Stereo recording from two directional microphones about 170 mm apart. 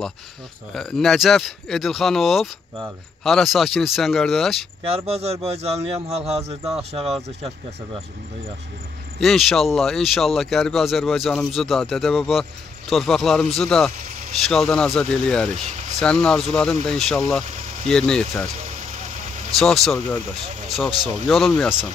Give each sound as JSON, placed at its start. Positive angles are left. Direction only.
{"t": 0.7, "sound": "speech", "side_deg": 5}
{"t": 4.9, "sound": "a man's voice", "side_deg": -35}
{"t": 9.2, "sound": "speech", "side_deg": 0}
{"t": 15.5, "sound": "speech", "side_deg": -45}
{"t": 16.0, "sound": "speech", "side_deg": 5}
{"t": 18.6, "sound": "vehicle", "side_deg": -45}
{"t": 19.6, "sound": "speech", "side_deg": 0}
{"t": 21.3, "sound": "speech", "side_deg": 0}